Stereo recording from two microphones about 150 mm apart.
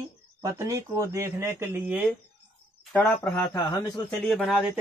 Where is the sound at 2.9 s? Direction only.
10° left (ahead or behind).